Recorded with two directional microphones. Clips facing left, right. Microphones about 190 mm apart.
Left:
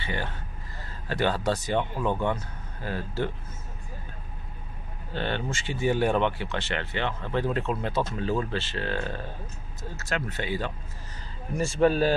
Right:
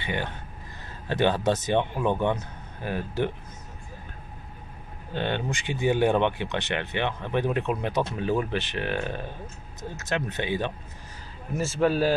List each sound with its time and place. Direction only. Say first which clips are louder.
0.0 s a man's voice: right 2 dB; 20° right (ahead or behind)
5.1 s a man's voice: right 2 dB; 15° right (ahead or behind)
11.5 s speech: left 1 dB; centre (ahead or behind)